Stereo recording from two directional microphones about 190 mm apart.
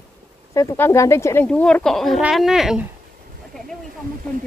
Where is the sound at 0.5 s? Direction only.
15° left (ahead or behind); by 2.9 s 5° right (ahead or behind).